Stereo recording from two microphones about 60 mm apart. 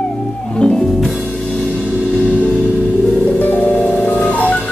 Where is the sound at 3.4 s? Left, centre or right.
Left.